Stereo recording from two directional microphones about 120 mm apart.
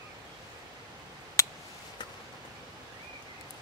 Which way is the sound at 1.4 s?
25° left (ahead or behind).